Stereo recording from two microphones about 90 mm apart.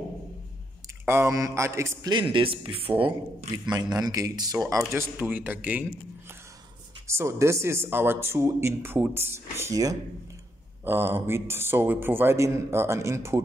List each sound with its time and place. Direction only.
1.0 s mantra: 25° right (ahead or behind)
2.0 s speech: 65° right (ahead or behind)
3.5 s speech: 50° right (ahead or behind)
5.2 s speech: 20° right (ahead or behind)
7.1 s speech: 30° right (ahead or behind)
10.8 s speech: 25° right (ahead or behind)